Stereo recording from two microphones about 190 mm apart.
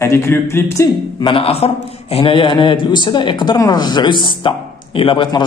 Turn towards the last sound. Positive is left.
turn(degrees=25)  # may be behind; listen again after turning